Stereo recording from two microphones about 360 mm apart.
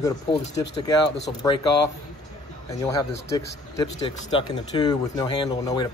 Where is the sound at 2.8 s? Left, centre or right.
Centre.